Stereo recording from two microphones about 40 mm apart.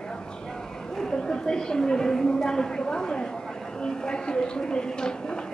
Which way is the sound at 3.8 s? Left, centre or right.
Left.